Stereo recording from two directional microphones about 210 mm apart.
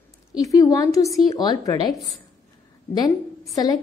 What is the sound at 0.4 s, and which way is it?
A woman's voice, 15° left (ahead or behind).